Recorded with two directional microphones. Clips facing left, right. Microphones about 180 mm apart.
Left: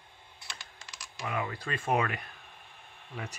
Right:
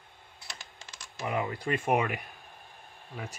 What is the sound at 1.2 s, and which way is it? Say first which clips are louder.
Speech: right 3 dB; 20° right (ahead or behind).